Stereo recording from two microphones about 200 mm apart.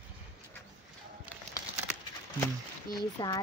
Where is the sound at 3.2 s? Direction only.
25° left (ahead or behind).